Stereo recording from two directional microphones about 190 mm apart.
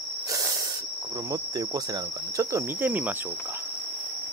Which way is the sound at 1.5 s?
20° right (ahead or behind).